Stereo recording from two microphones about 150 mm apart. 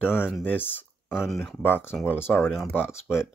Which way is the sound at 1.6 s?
15° left (ahead or behind).